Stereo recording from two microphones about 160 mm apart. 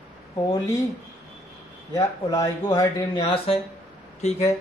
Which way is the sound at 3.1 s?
35° left (ahead or behind).